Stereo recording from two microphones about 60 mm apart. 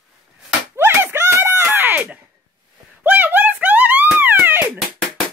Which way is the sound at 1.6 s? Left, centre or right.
Right.